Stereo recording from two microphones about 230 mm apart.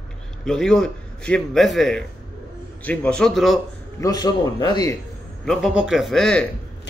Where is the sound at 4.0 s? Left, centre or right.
Centre.